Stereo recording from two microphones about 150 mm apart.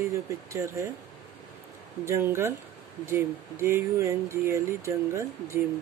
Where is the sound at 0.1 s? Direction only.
20° right (ahead or behind).